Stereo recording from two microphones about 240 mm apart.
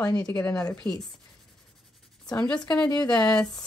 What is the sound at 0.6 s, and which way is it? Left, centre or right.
Speech, centre.